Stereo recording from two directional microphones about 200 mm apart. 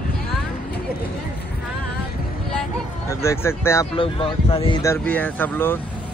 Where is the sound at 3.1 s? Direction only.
15° left (ahead or behind).